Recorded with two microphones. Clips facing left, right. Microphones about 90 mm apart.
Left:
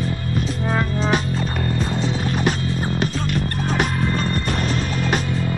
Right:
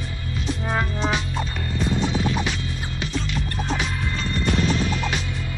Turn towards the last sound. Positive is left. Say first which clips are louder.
# left 5 dB
turn(degrees=50)  # may be behind; listen again after turning